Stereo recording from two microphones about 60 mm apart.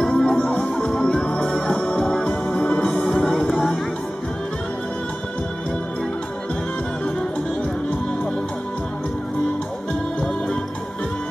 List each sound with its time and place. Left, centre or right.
0.0 s music: centre